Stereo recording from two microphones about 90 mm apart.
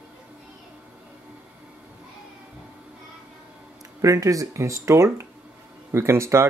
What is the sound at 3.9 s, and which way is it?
Speech, 35° right (ahead or behind).